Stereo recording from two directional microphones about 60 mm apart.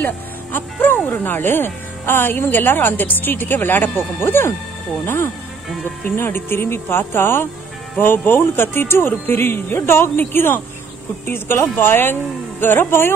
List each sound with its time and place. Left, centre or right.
0.0 s speech: left